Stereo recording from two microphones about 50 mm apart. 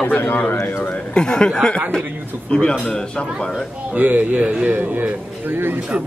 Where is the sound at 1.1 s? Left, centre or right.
Centre.